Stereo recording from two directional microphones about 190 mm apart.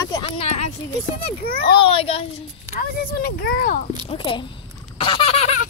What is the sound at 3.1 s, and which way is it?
Speech, 50° left (ahead or behind).